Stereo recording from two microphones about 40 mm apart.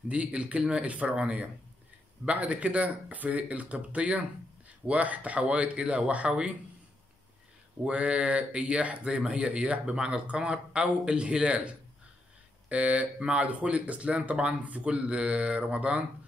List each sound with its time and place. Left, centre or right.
0.1 s speech: right
7.8 s speech: right